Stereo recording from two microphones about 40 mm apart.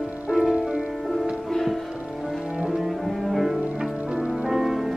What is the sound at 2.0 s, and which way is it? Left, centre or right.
Music, centre.